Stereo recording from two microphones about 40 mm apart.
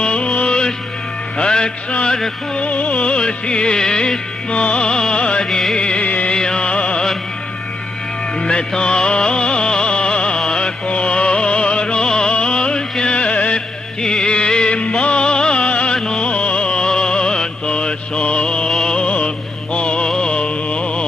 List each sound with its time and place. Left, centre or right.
0.0 s music: left
6.0 s music: left
6.3 s music: centre
8.4 s music: left
14.0 s music: centre
19.1 s mantra: left
20.1 s music: left